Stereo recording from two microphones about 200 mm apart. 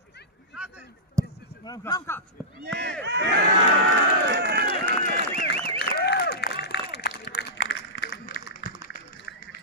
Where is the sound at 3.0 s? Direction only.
60° right (ahead or behind).